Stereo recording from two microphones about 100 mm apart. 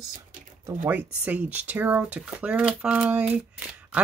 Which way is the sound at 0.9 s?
15° right (ahead or behind).